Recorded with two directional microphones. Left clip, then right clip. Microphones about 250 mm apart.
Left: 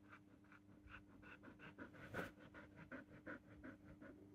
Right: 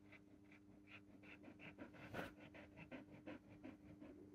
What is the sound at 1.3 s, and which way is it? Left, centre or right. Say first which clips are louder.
Pant: right 1 dB; left.